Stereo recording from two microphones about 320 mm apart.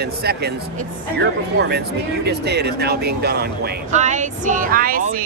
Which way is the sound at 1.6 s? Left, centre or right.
Right.